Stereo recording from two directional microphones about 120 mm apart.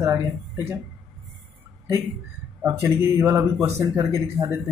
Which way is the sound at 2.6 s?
20° right (ahead or behind).